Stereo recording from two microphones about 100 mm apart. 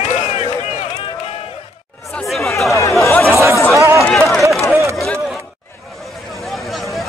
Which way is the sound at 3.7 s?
30° right (ahead or behind).